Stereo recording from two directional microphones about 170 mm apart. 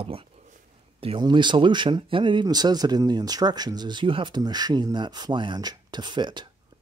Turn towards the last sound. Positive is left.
turn(degrees=-25)  # may be behind; listen again after turning